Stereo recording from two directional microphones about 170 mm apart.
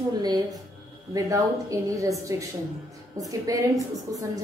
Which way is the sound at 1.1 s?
20° right (ahead or behind).